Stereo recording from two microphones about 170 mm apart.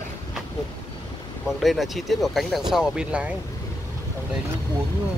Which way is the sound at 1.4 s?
Centre (ahead or behind).